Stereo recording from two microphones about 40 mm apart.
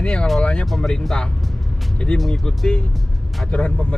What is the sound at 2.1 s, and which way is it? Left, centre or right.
Speech, left.